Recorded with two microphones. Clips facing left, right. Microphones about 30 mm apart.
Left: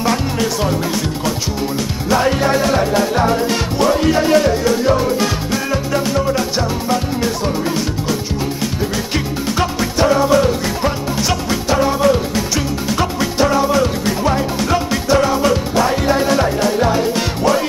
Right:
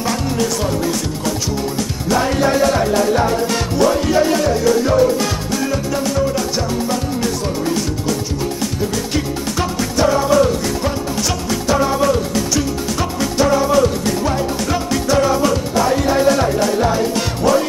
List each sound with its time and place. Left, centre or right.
0.0 s music: centre
2.0 s music: centre